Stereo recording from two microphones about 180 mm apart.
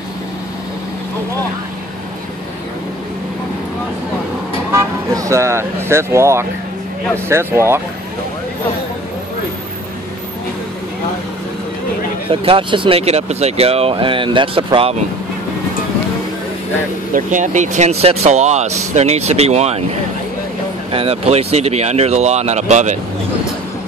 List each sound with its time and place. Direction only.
4.7 s speech: 15° right (ahead or behind)
12.3 s speech: 30° right (ahead or behind)
17.1 s speech: 45° right (ahead or behind)
20.9 s speech: 30° right (ahead or behind)